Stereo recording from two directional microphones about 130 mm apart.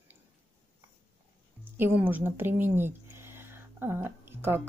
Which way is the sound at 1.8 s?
15° right (ahead or behind).